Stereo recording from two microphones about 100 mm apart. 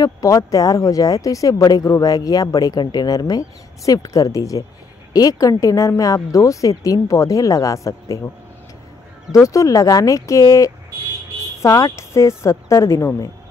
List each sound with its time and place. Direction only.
0.0 s speech: 35° left (ahead or behind)
9.3 s speech: 30° left (ahead or behind)